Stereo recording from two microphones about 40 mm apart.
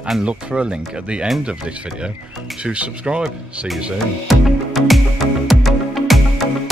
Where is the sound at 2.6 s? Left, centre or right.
Right.